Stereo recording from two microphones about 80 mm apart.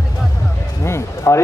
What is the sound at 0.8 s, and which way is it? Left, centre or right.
Speech, left.